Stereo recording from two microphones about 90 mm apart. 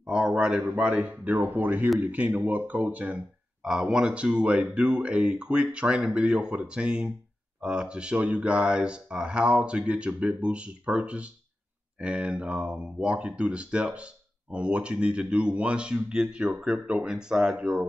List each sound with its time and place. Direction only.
0.0 s speech: 10° right (ahead or behind)